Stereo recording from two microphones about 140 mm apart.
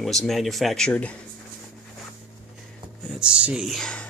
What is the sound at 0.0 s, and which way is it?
Speech, centre (ahead or behind).